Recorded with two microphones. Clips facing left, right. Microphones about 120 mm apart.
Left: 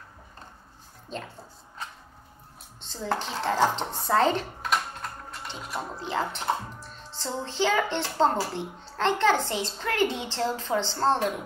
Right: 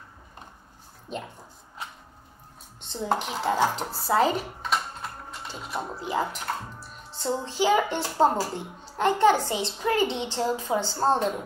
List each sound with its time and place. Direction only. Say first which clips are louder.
1.1 s a child's voice: right 2 dB; 15° right (ahead or behind)
2.8 s dishes: right 3 dB; 20° right (ahead or behind)
3.3 s speech: left 3 dB; 10° right (ahead or behind)
5.8 s a child's voice: right 2 dB; 15° right (ahead or behind)
11.1 s speech: right 1 dB; 5° left (ahead or behind)